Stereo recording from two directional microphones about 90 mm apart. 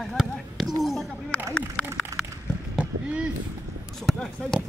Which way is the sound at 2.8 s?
15° right (ahead or behind).